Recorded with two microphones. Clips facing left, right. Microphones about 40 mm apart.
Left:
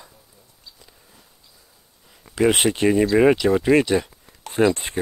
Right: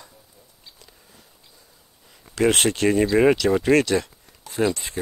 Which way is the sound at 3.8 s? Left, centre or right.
Centre.